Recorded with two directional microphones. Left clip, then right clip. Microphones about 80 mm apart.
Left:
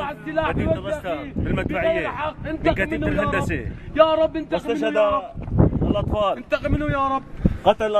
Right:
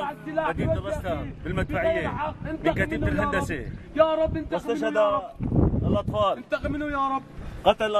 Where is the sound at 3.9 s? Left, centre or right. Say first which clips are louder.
Left 5 dB; left.